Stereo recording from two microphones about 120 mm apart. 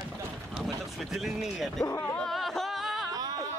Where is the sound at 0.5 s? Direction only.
Centre (ahead or behind).